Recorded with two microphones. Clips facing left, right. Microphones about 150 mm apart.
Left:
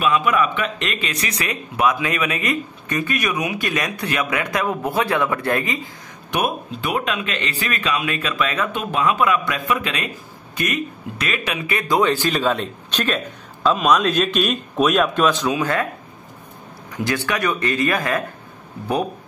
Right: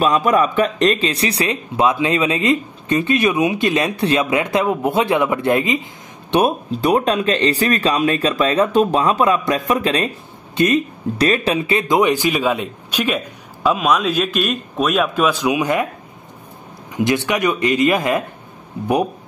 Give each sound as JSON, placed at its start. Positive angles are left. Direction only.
{"t": 0.0, "sound": "speech", "side_deg": -35}
{"t": 6.3, "sound": "speech", "side_deg": -35}
{"t": 16.9, "sound": "speech", "side_deg": -20}